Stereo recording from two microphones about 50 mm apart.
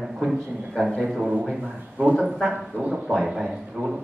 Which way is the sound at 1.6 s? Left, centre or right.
Right.